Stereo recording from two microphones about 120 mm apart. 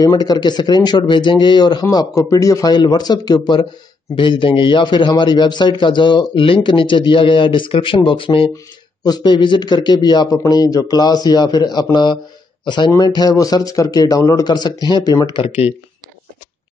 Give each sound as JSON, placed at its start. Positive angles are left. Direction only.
{"t": 0.0, "sound": "a man's voice", "side_deg": 30}
{"t": 15.4, "sound": "a man's voice", "side_deg": 55}